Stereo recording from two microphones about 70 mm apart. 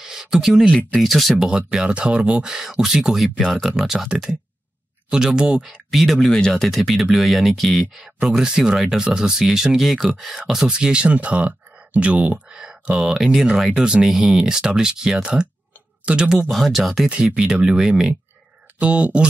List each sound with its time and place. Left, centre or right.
0.0 s a sound: centre
0.9 s speech: centre
1.5 s speech: centre
5.9 s speech: centre
16.4 s speech: centre
17.1 s speech: centre